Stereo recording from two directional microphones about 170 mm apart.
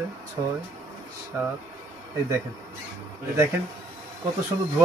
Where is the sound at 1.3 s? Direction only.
15° right (ahead or behind).